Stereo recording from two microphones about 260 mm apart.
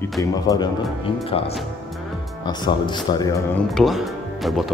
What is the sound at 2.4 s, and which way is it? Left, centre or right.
Speech, centre.